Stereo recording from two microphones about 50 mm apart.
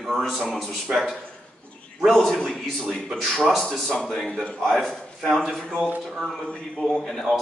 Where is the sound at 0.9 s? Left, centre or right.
Centre.